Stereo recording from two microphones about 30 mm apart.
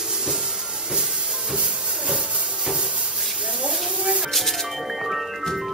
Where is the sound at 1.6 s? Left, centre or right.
Right.